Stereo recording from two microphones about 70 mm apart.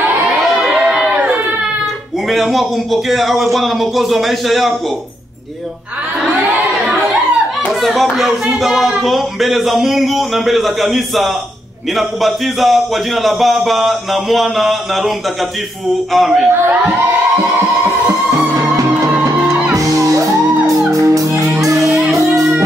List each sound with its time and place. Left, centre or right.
0.5 s a sound: centre
2.2 s speech: centre
7.8 s speech: centre
19.7 s music: right